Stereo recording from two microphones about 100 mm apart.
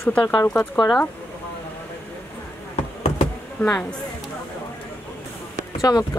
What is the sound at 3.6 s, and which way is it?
Speech, 10° left (ahead or behind).